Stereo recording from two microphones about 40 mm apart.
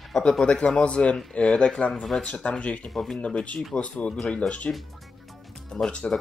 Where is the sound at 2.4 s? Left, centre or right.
Left.